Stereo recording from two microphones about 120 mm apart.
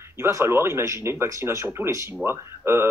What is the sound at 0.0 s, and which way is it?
Speech, 20° right (ahead or behind).